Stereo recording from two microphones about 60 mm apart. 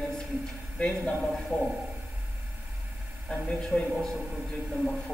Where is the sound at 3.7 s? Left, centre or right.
Centre.